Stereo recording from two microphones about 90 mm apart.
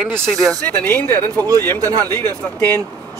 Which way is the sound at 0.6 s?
20° left (ahead or behind).